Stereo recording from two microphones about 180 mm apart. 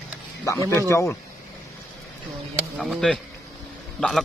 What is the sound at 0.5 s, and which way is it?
Speech, 15° left (ahead or behind).